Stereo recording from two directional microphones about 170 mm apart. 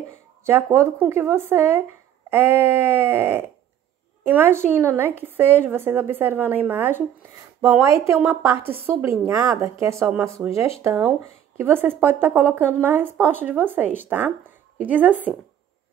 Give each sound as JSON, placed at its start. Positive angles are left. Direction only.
{"t": 0.5, "sound": "a woman's voice", "side_deg": -15}
{"t": 9.9, "sound": "speech", "side_deg": -5}
{"t": 10.8, "sound": "a woman's voice", "side_deg": -15}